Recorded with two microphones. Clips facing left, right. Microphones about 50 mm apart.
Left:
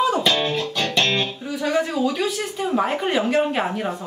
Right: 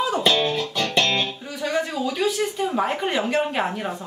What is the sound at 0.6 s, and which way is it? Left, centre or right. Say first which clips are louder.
Music: left 1 dB; left.